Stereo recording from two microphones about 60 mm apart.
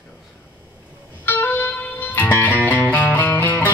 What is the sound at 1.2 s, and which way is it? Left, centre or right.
Music, left.